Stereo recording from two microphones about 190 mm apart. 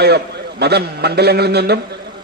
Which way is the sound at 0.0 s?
60° right (ahead or behind).